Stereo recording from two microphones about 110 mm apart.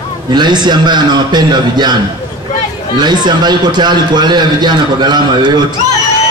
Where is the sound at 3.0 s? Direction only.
40° right (ahead or behind).